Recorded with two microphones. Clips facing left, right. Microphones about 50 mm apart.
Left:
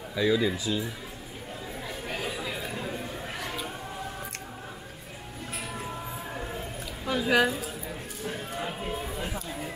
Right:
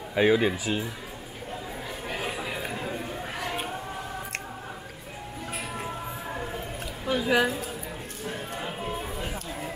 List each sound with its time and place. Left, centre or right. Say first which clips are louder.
0.1 s speech: right 3 dB; right
2.2 s chatter: right 1 dB; right
5.9 s music: right 2 dB; centre
7.1 s a woman's voice: even; centre
8.3 s a sound: even; centre